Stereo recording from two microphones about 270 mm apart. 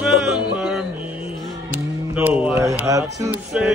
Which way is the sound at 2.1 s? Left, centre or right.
Centre.